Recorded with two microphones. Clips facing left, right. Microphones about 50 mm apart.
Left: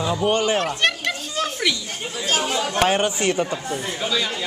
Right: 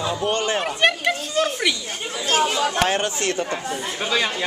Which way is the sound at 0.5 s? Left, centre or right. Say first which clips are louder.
Right 1 dB; centre.